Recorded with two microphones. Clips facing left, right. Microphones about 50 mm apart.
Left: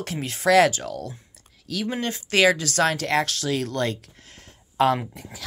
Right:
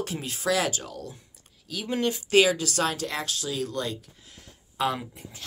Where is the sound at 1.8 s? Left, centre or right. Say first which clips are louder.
Right 2 dB; left.